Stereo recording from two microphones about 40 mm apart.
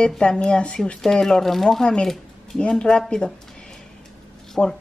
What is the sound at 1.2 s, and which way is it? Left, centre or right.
A woman's voice, centre.